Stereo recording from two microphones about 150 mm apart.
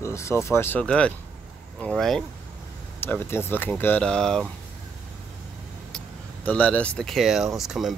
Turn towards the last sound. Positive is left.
turn(degrees=0)  # may be behind; listen again after turning